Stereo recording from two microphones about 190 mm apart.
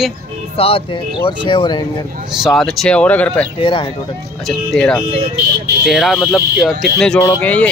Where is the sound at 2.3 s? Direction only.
Centre (ahead or behind).